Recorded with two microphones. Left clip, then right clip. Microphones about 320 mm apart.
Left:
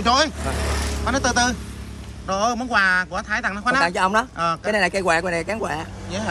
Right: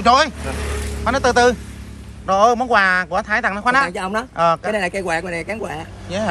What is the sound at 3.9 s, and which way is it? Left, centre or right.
Speech, centre.